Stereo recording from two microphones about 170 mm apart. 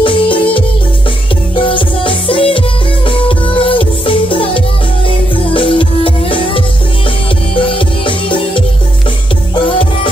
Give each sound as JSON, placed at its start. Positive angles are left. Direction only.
{"t": 0.0, "sound": "music", "side_deg": 30}
{"t": 7.6, "sound": "music", "side_deg": 30}